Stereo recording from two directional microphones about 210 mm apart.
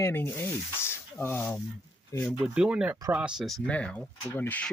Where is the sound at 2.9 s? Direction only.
15° right (ahead or behind).